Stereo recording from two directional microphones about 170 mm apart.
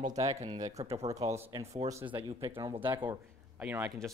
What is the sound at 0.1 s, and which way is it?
Speech, 20° right (ahead or behind).